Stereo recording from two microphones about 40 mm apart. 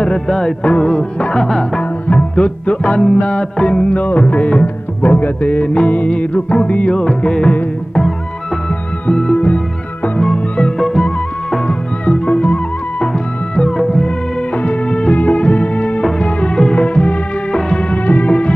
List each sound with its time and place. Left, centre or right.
0.7 s music: left
1.8 s music: left
3.9 s music: left
9.0 s music: left
10.8 s music: centre
11.6 s music: left
13.7 s music: left
17.9 s music: left